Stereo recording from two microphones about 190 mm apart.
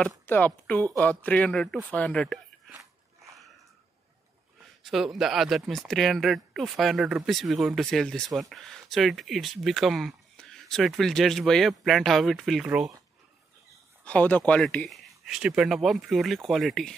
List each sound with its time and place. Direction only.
0.3 s a woman's voice: 10° left (ahead or behind)
4.8 s speech: centre (ahead or behind)
14.0 s speech: 10° left (ahead or behind)